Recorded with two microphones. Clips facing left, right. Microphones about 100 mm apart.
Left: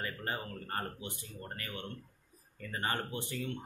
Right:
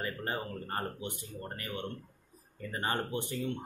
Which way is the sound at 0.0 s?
25° right (ahead or behind).